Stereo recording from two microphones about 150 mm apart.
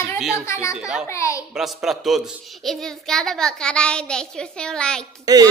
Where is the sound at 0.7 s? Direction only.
5° right (ahead or behind).